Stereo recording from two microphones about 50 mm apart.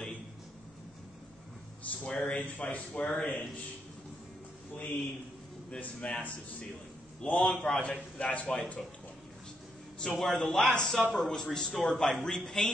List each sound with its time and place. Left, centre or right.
1.9 s speech: left
5.8 s speech: left
10.1 s speech: centre